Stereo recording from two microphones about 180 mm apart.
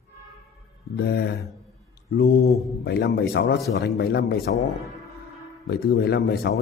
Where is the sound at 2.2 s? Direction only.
60° left (ahead or behind).